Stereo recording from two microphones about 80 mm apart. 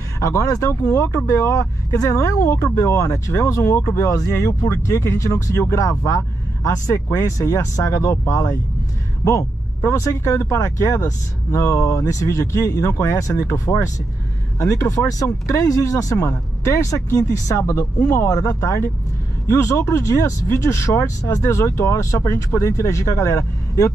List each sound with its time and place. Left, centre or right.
0.2 s speech: left
16.2 s speech: left
18.3 s speech: left